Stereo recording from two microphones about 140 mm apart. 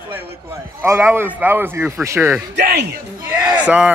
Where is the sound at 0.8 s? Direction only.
15° right (ahead or behind).